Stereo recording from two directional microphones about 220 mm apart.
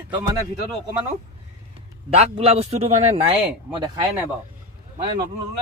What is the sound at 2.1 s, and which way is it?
A man's voice, 25° right (ahead or behind).